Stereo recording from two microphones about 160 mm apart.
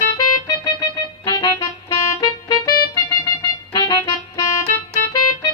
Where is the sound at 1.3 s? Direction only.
25° left (ahead or behind).